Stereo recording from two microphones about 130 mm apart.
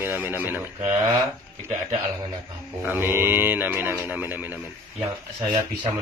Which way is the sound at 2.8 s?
15° right (ahead or behind).